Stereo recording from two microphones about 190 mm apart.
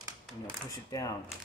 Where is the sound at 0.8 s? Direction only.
20° left (ahead or behind).